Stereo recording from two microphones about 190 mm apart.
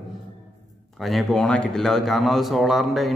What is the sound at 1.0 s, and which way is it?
Speech, centre (ahead or behind).